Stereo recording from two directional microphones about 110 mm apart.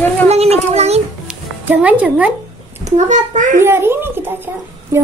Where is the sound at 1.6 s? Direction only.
15° right (ahead or behind).